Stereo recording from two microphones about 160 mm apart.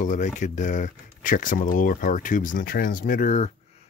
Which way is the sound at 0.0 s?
50° left (ahead or behind).